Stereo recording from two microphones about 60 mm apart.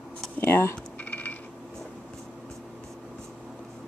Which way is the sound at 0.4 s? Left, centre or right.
Left.